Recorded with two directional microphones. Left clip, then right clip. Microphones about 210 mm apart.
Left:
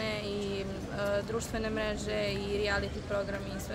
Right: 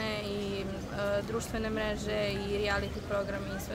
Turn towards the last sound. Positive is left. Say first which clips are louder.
# right 1 dB
turn(degrees=0)  # may be behind; listen again after turning